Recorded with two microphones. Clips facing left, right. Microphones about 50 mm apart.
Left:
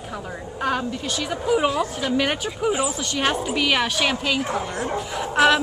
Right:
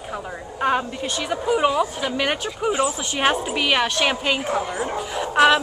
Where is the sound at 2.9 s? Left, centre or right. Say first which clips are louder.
Right 2 dB; centre.